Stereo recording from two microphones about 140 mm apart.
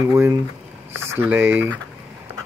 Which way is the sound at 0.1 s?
20° right (ahead or behind).